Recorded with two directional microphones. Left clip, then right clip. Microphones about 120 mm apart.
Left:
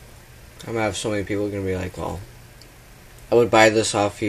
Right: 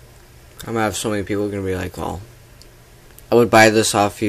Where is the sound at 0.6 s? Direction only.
25° right (ahead or behind).